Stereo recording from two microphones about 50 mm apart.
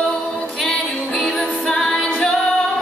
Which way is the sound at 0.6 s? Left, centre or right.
Centre.